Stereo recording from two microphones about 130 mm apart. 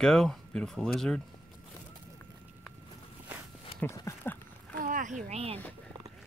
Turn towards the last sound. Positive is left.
turn(degrees=-50)  # may be behind; listen again after turning